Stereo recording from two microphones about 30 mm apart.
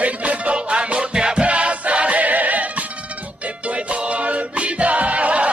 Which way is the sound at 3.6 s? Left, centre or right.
Right.